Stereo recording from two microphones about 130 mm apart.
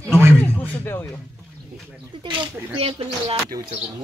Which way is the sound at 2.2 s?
45° right (ahead or behind).